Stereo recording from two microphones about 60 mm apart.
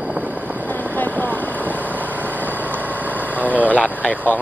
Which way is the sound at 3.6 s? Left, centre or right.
Left.